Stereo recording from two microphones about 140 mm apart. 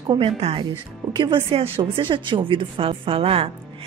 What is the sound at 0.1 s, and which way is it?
A woman's voice, 40° right (ahead or behind).